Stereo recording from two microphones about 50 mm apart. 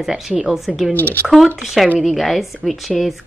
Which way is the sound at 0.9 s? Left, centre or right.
Left.